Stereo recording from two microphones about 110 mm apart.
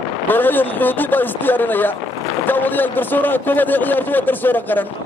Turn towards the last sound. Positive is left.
turn(degrees=15)  # may be behind; listen again after turning